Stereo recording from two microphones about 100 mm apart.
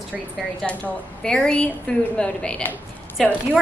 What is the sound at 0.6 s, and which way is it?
A woman's voice, 5° left (ahead or behind).